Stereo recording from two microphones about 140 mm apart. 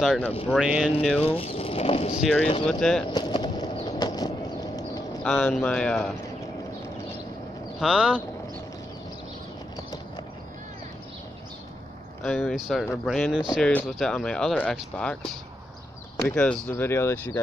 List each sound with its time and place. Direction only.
0.0 s speech: 5° left (ahead or behind)
1.2 s speech: 45° left (ahead or behind)
2.6 s speech: 5° left (ahead or behind)
3.1 s a sound: 35° left (ahead or behind)
3.9 s vehicle: 30° left (ahead or behind)
5.2 s speech: 5° left (ahead or behind)
7.8 s speech: 5° right (ahead or behind)
12.2 s speech: 5° left (ahead or behind)
16.3 s speech: 10° left (ahead or behind)